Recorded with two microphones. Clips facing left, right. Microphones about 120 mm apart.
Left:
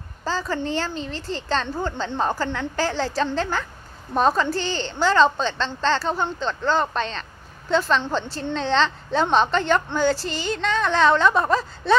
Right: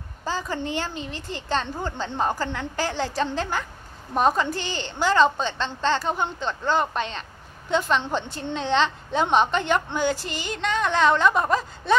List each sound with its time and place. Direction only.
0.2 s a woman's voice: 15° right (ahead or behind)